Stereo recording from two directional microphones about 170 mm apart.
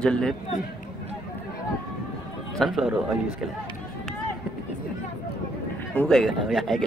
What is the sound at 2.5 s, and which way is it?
Speech, centre (ahead or behind).